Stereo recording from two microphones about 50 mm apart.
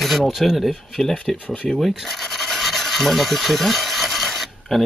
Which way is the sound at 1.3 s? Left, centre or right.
Left.